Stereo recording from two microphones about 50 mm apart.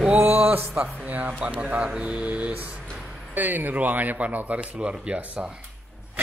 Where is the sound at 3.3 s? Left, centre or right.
Right; by 5.5 s centre.